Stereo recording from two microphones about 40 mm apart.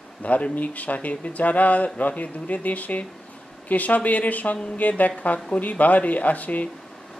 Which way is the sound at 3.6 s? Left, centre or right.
Left.